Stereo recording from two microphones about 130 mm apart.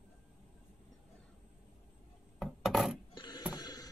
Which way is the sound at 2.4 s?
Centre (ahead or behind).